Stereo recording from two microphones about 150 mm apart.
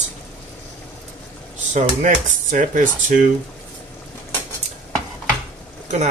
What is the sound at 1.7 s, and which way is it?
Speech, 55° right (ahead or behind).